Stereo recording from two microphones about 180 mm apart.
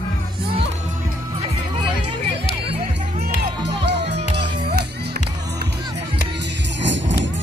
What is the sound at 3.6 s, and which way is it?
Music, 70° right (ahead or behind).